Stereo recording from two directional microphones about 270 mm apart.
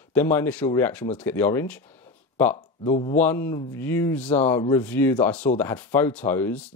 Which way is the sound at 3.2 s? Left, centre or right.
Centre.